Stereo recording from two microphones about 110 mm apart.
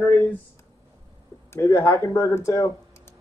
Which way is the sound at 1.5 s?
25° left (ahead or behind).